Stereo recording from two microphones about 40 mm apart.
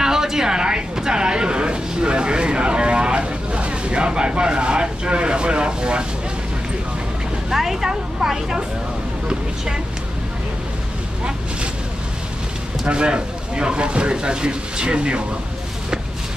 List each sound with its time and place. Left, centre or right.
0.0 s a sound: centre
7.4 s vehicle: centre
7.9 s speech: centre
12.8 s speech: right